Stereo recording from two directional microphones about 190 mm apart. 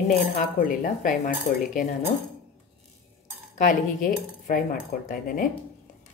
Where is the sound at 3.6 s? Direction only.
45° left (ahead or behind).